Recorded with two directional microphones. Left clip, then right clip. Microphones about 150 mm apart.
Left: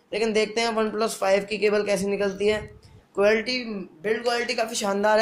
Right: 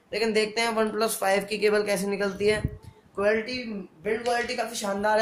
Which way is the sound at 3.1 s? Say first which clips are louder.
Left 4 dB; 35° left (ahead or behind).